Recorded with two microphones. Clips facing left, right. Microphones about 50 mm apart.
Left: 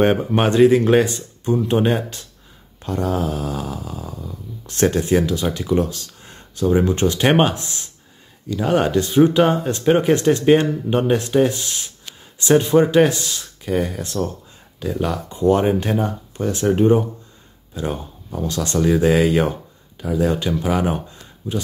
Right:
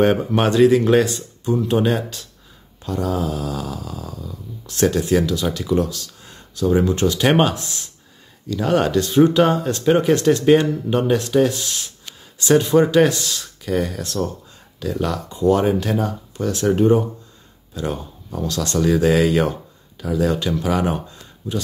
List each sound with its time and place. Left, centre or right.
0.1 s speech: left
2.8 s snoring: left
6.8 s speech: left
8.5 s speech: centre
12.9 s speech: left
13.2 s speech: centre
15.2 s speech: left
16.6 s speech: centre